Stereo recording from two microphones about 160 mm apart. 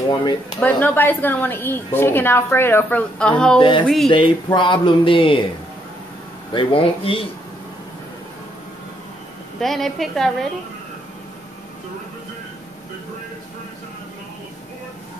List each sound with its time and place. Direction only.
0.6 s a woman's voice: 10° left (ahead or behind)
3.5 s speech: 30° left (ahead or behind)
3.8 s a woman's voice: centre (ahead or behind)
4.1 s speech: 30° left (ahead or behind)
6.5 s speech: 35° left (ahead or behind)
9.6 s a woman's voice: centre (ahead or behind)